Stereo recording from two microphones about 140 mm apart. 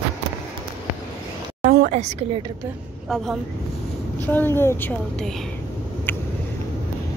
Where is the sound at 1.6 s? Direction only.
65° right (ahead or behind).